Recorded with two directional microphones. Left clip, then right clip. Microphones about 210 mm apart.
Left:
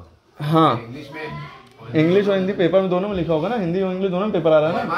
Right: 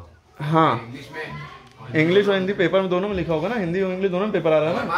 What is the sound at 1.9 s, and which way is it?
A man's voice, 15° left (ahead or behind).